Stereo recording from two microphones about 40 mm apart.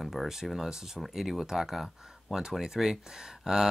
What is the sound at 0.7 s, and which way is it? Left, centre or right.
Speech, centre.